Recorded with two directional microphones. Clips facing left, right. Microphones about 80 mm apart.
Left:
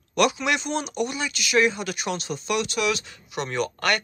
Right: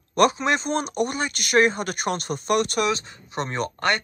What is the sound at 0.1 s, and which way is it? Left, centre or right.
Speech, right.